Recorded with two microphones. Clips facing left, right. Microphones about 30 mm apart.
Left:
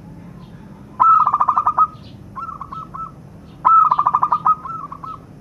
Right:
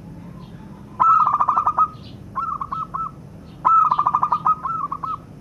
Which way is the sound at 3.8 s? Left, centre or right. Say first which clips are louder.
Left 3 dB; centre.